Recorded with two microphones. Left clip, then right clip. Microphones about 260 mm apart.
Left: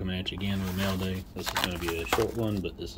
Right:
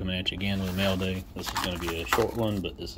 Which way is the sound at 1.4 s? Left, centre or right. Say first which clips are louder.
Left 1 dB; left.